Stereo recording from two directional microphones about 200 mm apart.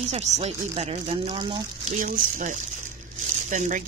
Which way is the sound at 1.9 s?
40° right (ahead or behind).